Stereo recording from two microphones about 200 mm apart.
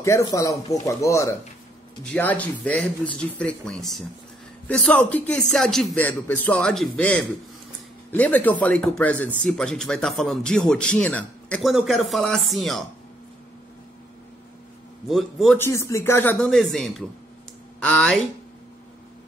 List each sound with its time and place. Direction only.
0.0 s speech: 15° left (ahead or behind); by 12.8 s centre (ahead or behind)
15.0 s speech: centre (ahead or behind)
15.5 s speech: 15° left (ahead or behind)